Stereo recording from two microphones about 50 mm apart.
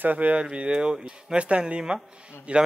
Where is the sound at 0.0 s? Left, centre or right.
Right.